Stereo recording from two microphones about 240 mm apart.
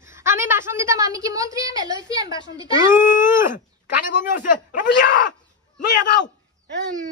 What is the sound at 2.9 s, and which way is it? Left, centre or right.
Speech, left.